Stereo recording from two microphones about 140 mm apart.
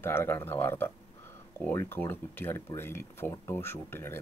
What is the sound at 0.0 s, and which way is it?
Speech, 15° left (ahead or behind).